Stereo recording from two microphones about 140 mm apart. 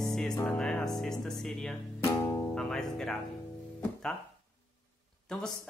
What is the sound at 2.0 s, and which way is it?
Music, 20° left (ahead or behind).